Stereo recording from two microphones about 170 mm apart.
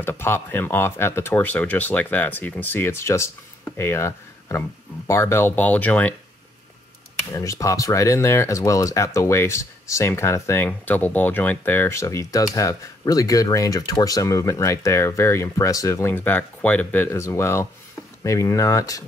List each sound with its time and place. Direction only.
0.0 s speech: 10° left (ahead or behind)
7.3 s speech: 20° left (ahead or behind)